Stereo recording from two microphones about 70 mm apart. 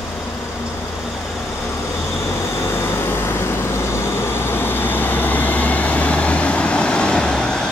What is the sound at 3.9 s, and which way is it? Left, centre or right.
Vehicle, left.